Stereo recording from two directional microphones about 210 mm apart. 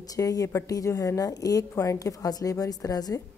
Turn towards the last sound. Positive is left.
turn(degrees=15)  # may be behind; listen again after turning